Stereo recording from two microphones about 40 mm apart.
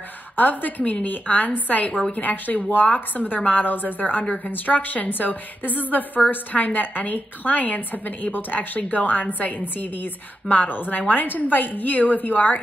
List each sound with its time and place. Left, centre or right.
0.4 s a woman's voice: left